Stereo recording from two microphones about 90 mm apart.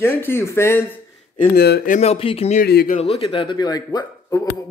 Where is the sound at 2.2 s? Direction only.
90° left.